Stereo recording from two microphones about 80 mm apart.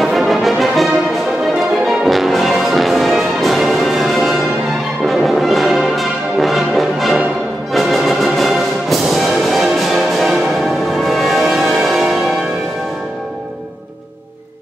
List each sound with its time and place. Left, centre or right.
0.0 s brass instrument: centre
1.9 s music: centre